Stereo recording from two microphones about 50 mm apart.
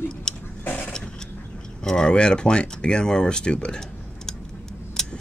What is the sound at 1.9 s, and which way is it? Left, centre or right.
Speech, centre.